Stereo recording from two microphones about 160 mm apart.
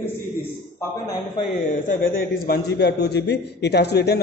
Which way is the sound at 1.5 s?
60° left (ahead or behind).